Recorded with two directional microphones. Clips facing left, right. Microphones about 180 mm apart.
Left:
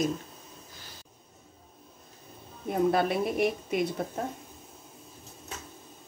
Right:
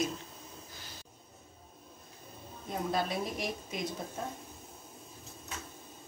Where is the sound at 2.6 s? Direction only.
60° left (ahead or behind).